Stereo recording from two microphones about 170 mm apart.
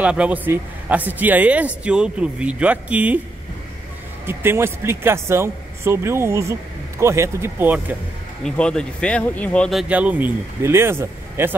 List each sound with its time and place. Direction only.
0.0 s speech: 5° right (ahead or behind)
4.3 s speech: 15° right (ahead or behind)
8.5 s speech: 5° left (ahead or behind); by 11.5 s 15° right (ahead or behind)